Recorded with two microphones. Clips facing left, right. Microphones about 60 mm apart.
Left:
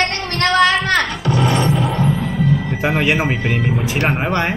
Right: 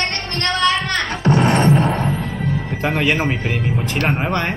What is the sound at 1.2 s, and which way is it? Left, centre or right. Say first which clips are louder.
Music: right 7 dB; right.